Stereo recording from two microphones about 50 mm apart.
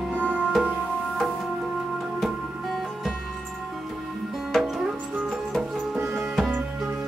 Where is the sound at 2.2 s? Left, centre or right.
Centre.